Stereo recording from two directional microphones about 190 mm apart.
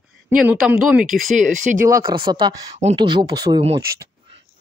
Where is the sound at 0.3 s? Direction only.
5° right (ahead or behind).